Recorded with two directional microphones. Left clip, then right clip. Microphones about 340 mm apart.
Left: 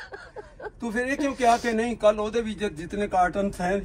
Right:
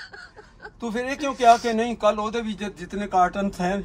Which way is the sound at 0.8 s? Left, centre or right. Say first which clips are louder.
Even; centre.